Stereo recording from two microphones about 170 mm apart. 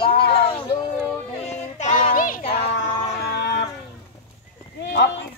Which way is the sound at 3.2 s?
80° left.